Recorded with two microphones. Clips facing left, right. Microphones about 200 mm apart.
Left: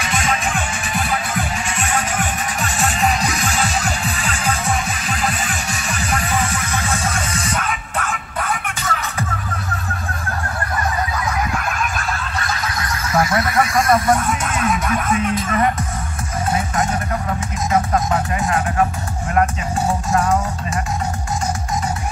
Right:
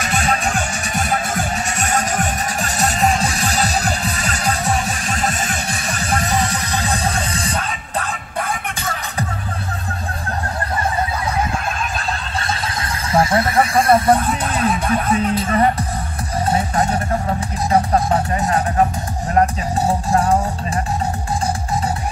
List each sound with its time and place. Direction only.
0.0 s music: 40° right (ahead or behind)
11.5 s neigh: 25° right (ahead or behind)
16.4 s music: 30° right (ahead or behind)
19.9 s music: 35° right (ahead or behind)